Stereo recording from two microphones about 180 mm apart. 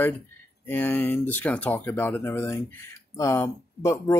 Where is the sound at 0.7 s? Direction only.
10° left (ahead or behind).